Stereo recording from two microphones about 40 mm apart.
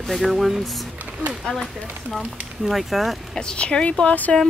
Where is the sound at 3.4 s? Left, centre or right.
Left.